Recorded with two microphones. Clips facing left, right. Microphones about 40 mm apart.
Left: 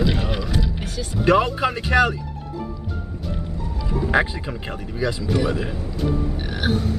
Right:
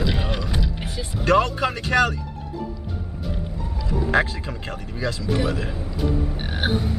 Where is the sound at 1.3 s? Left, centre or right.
Centre.